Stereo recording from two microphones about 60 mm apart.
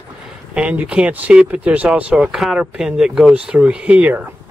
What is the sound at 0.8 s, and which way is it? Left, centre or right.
Speech, right.